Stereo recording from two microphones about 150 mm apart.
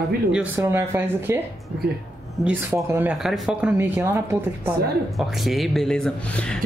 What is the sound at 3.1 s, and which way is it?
Speech, centre (ahead or behind).